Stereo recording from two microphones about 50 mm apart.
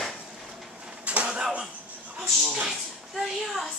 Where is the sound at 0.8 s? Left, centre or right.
Right.